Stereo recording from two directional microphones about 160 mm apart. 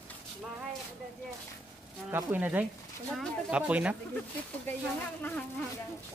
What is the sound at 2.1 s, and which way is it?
Speech, 10° right (ahead or behind).